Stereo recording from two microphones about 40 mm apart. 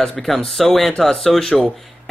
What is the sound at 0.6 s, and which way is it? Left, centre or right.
Speech, centre.